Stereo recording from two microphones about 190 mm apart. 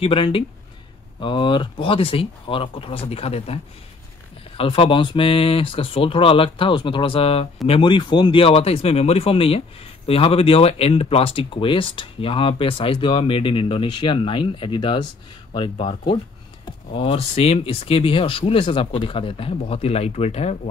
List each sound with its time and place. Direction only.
0.0 s speech: 30° left (ahead or behind)
4.6 s speech: 30° left (ahead or behind)